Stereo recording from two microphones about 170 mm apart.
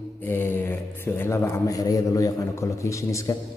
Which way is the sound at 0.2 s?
15° left (ahead or behind).